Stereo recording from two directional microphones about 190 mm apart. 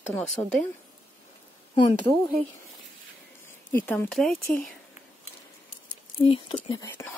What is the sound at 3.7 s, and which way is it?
Speech, 10° left (ahead or behind).